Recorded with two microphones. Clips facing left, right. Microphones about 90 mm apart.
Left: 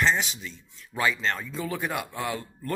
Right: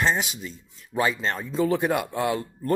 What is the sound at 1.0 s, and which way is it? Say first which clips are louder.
Speech: right 1 dB; 40° right (ahead or behind).